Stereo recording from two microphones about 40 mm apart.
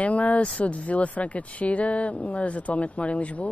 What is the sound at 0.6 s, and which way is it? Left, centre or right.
Speech, left.